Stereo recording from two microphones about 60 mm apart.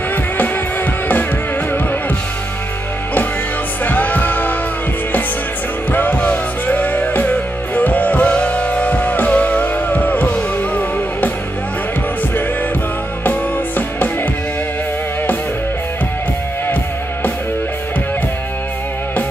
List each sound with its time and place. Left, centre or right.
3.8 s music: left
5.9 s music: left
13.2 s music: left